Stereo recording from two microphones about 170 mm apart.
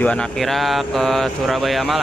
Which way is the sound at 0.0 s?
5° left (ahead or behind).